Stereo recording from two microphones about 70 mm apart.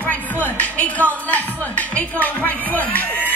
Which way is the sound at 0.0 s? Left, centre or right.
Left.